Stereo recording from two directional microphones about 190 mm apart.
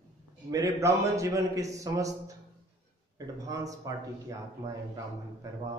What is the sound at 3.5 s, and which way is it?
Speech, 15° right (ahead or behind).